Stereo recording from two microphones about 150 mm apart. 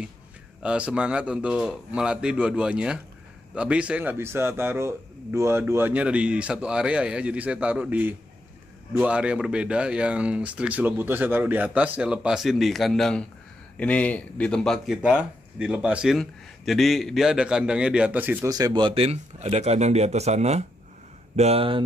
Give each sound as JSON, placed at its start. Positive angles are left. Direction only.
{"t": 0.6, "sound": "a man's voice", "side_deg": -5}
{"t": 15.0, "sound": "a man's voice", "side_deg": -5}
{"t": 18.5, "sound": "a man's voice", "side_deg": -30}